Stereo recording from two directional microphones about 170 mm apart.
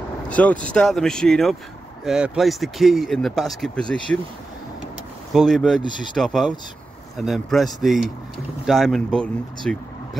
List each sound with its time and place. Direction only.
0.3 s speech: 10° left (ahead or behind)
5.3 s speech: centre (ahead or behind)
5.8 s speech: 25° left (ahead or behind)
6.1 s speech: 5° left (ahead or behind)